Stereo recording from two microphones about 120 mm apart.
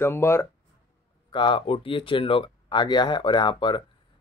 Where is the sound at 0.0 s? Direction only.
20° left (ahead or behind).